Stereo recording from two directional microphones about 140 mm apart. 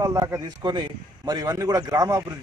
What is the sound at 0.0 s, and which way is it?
Speech, 25° right (ahead or behind).